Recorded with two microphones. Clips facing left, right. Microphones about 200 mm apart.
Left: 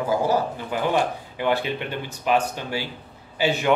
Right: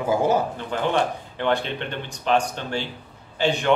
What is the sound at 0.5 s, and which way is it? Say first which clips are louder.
Speech: even; 10° left (ahead or behind).